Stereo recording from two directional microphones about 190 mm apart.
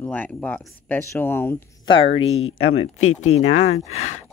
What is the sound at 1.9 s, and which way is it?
Speech, 30° left (ahead or behind).